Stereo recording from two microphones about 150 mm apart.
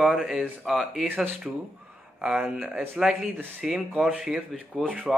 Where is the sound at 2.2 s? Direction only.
5° right (ahead or behind).